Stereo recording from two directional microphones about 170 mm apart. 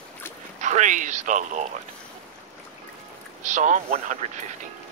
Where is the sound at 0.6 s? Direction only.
45° right (ahead or behind).